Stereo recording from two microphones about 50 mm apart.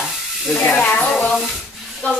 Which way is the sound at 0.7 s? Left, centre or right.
Left.